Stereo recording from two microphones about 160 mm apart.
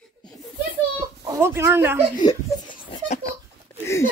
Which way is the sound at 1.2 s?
15° right (ahead or behind).